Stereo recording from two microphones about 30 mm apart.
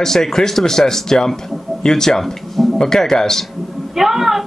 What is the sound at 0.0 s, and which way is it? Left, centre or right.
Speech, centre.